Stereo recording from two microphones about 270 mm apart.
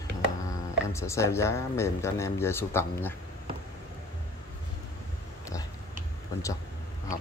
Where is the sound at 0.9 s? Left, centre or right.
Centre.